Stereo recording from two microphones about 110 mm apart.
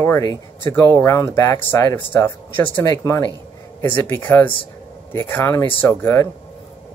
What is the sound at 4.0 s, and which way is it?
Speech, 20° left (ahead or behind).